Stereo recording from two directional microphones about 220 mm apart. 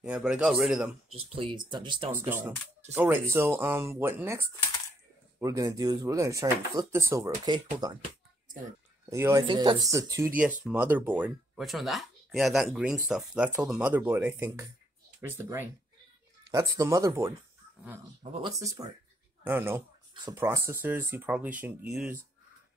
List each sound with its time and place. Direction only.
0.0 s speech: 5° right (ahead or behind)
1.1 s speech: 25° right (ahead or behind)
2.1 s speech: 10° right (ahead or behind)
9.1 s speech: 15° right (ahead or behind)
18.2 s speech: 25° right (ahead or behind)
18.6 s speech: 15° right (ahead or behind)